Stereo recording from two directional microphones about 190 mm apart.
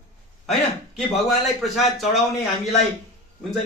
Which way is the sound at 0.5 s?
Centre (ahead or behind).